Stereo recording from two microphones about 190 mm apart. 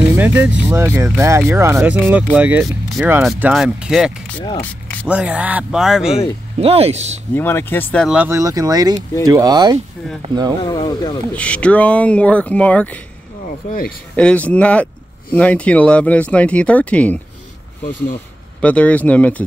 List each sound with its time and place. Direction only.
0.1 s speech: 10° right (ahead or behind)
6.6 s speech: 30° right (ahead or behind)
7.3 s speech: 10° left (ahead or behind)
8.1 s speech: 10° right (ahead or behind)
10.6 s speech: 20° left (ahead or behind)
11.3 s speech: 5° left (ahead or behind)
13.7 s speech: 45° left (ahead or behind)
14.1 s speech: 5° left (ahead or behind)
18.6 s speech: 5° left (ahead or behind)